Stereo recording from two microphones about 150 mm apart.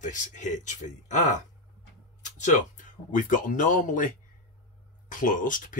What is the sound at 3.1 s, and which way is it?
Speech, 65° left (ahead or behind).